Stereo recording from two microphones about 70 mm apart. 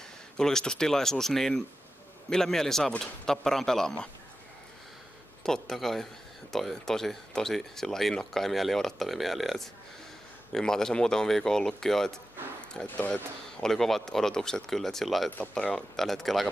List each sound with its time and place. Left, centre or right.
0.4 s speech: centre
5.4 s speech: centre
12.8 s speech: left
13.1 s speech: centre